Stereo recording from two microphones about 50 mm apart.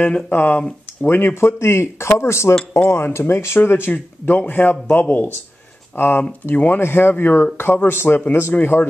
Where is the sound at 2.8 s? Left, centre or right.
Left.